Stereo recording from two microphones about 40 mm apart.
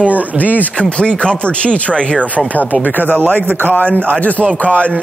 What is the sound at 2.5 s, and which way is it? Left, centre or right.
A man's voice, left.